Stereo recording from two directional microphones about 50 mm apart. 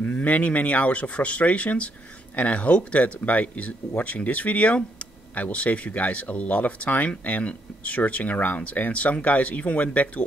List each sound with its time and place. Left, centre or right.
0.0 s speech: left